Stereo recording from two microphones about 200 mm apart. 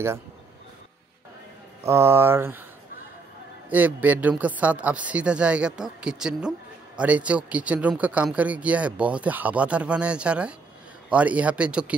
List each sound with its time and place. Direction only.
1.9 s speech: 15° right (ahead or behind)
3.7 s speech: 10° right (ahead or behind)